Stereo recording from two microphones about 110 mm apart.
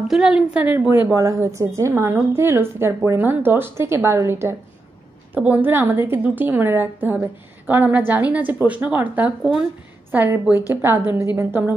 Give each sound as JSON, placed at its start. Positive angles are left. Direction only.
{"t": 0.1, "sound": "a woman's voice", "side_deg": -5}
{"t": 1.1, "sound": "a woman's voice", "side_deg": -25}